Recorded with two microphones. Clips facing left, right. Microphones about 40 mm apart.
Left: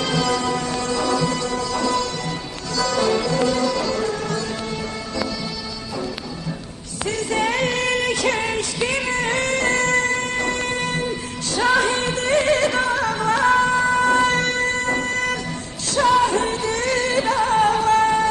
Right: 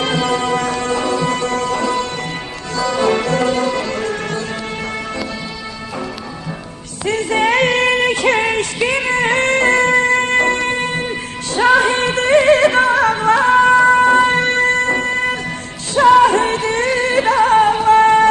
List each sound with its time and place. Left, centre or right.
0.0 s music: right
3.1 s music: right
7.1 s music: right
14.5 s music: right
17.6 s music: right
18.0 s wind instrument: right